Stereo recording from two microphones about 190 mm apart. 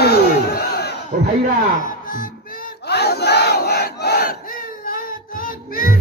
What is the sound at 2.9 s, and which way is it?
Battle cry, 60° left (ahead or behind).